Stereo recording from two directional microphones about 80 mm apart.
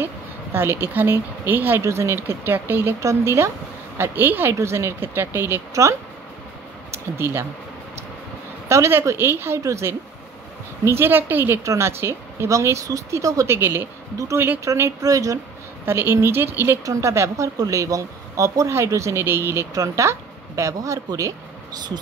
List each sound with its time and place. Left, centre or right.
0.0 s speech: right
1.8 s speech: right
3.0 s speech: right
8.6 s speech: right
9.6 s speech: right
10.9 s speech: right
11.6 s speech: right
13.6 s speech: right
14.1 s speech: right
15.8 s speech: right
16.8 s speech: right
19.7 s speech: right